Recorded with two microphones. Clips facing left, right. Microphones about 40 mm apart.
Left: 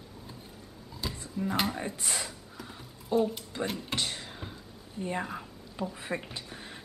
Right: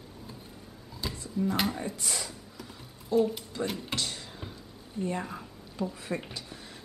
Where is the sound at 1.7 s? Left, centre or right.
Left.